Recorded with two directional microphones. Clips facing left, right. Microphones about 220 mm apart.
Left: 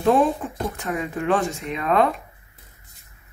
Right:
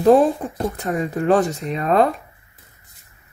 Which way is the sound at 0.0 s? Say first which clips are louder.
Right 5 dB; 45° right (ahead or behind).